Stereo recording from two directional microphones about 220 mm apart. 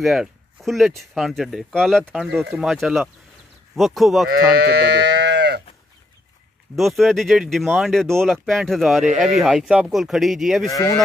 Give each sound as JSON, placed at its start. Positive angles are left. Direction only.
{"t": 0.0, "sound": "speech", "side_deg": 0}
{"t": 4.3, "sound": "speech", "side_deg": -45}
{"t": 6.7, "sound": "speech", "side_deg": 0}
{"t": 10.7, "sound": "speech", "side_deg": 15}